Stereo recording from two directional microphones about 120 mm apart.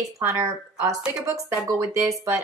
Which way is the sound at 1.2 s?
25° right (ahead or behind).